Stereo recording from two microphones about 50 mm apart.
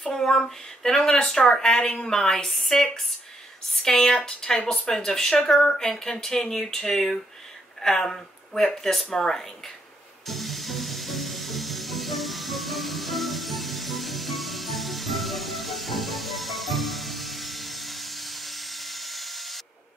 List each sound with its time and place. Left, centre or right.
0.0 s speech: centre
4.2 s speech: left
4.6 s speech: centre
10.2 s music: centre